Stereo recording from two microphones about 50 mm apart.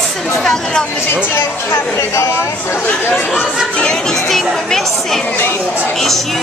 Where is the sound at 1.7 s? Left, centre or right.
Left.